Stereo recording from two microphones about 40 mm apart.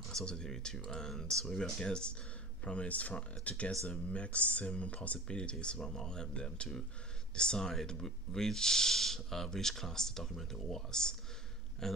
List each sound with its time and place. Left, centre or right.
0.1 s speech: centre